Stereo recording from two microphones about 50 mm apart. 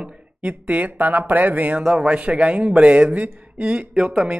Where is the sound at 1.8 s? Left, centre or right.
Centre.